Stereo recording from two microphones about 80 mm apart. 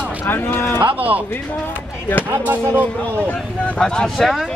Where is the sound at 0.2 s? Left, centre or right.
Left.